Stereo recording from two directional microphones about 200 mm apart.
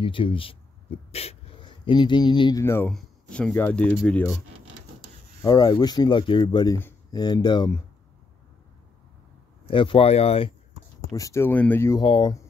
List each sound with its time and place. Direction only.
0.0 s speech: 25° left (ahead or behind); by 4.3 s 5° left (ahead or behind)
5.4 s speech: 20° left (ahead or behind)
9.7 s speech: 25° left (ahead or behind)
11.1 s speech: 15° left (ahead or behind)
12.0 s speech: 20° left (ahead or behind)